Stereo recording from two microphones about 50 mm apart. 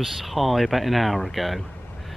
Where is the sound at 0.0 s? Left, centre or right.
Centre.